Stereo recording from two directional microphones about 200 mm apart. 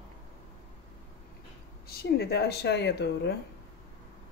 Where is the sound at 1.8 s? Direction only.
50° left (ahead or behind).